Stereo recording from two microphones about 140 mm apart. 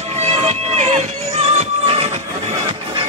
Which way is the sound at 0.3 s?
50° right (ahead or behind).